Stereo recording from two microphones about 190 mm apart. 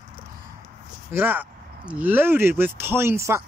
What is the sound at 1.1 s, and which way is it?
Speech, 10° right (ahead or behind).